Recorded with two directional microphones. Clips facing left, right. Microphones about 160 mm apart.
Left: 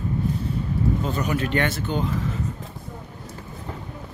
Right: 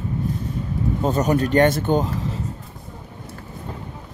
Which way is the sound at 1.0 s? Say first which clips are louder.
Right 6 dB; 40° right (ahead or behind).